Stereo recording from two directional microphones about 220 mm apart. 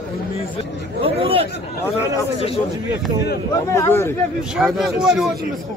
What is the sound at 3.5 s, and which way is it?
Speech, 10° left (ahead or behind).